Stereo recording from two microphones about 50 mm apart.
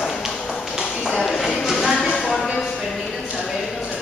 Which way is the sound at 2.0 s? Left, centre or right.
Centre.